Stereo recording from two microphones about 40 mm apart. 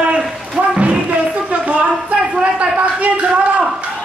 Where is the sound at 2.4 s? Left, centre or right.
Right.